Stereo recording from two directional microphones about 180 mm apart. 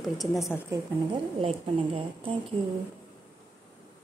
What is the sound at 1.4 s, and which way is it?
Speech, 30° right (ahead or behind).